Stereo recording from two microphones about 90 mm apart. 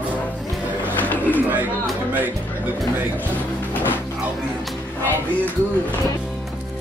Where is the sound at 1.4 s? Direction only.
20° right (ahead or behind).